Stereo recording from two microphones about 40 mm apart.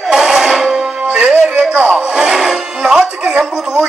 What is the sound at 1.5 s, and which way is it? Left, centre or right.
Speech, right.